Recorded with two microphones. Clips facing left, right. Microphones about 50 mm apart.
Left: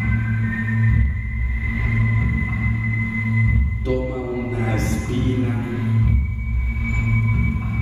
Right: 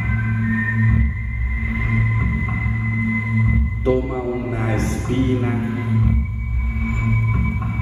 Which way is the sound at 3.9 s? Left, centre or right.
Right.